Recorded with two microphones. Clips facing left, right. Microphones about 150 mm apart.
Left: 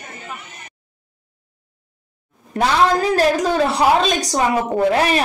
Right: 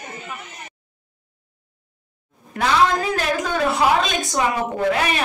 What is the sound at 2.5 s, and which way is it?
A woman's voice, 35° left (ahead or behind).